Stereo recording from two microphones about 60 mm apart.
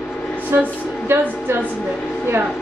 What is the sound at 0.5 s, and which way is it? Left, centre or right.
Speech, right.